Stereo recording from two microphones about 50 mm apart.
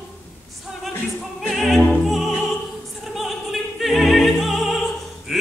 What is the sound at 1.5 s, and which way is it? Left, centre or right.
Opera, centre.